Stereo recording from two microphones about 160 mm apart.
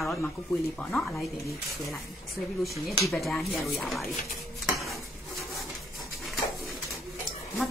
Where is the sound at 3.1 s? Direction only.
Centre (ahead or behind).